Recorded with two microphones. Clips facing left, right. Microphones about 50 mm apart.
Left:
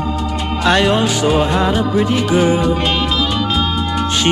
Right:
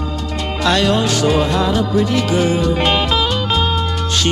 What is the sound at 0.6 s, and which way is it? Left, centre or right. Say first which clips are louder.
Music: left 2 dB; left.